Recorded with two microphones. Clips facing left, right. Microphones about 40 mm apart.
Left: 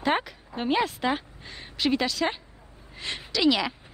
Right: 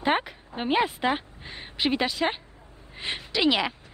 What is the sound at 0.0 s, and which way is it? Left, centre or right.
A woman's voice, right.